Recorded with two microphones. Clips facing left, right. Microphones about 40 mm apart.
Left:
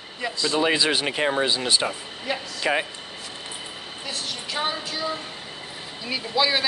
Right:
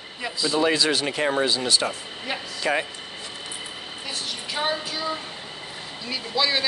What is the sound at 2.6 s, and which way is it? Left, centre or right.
Speech, centre.